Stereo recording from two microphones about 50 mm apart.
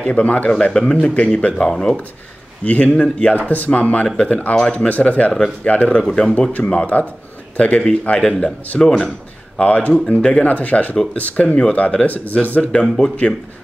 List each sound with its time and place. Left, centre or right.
0.0 s speech: left
0.6 s speech: centre
2.6 s speech: left
6.0 s speech: centre
6.5 s speech: left